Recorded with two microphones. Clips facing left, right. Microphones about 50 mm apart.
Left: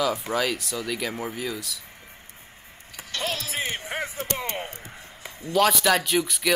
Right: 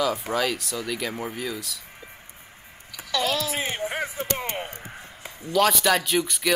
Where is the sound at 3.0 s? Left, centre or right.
Right.